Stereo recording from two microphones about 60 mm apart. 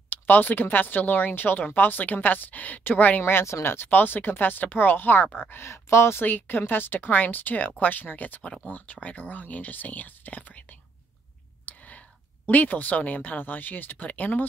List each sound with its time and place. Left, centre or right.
0.1 s speech: left
5.7 s speech: left
11.6 s whispering: left
12.4 s speech: left